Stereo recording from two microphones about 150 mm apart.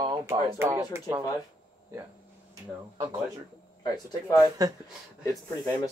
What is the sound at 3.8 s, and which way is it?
Speech, 25° left (ahead or behind).